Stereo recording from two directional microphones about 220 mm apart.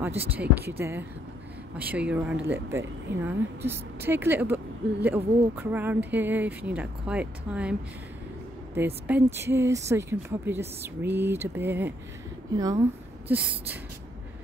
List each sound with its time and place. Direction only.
0.3 s speech: 5° right (ahead or behind)
8.7 s speech: 10° right (ahead or behind)